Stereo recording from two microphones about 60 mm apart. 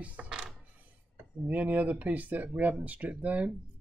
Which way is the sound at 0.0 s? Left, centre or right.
Right.